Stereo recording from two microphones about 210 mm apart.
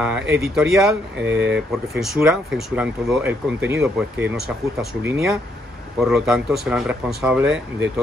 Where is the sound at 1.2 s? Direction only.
55° right (ahead or behind).